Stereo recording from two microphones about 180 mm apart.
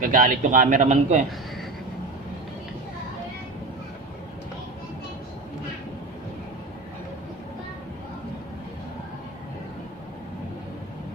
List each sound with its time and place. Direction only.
0.0 s a man's voice: 50° right (ahead or behind)